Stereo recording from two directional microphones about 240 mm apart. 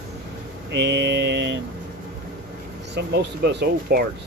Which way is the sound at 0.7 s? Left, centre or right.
Right.